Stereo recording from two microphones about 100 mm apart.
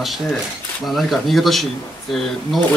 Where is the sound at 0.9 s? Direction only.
Centre (ahead or behind).